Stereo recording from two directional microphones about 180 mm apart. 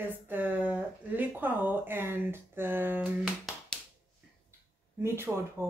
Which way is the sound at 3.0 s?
5° left (ahead or behind).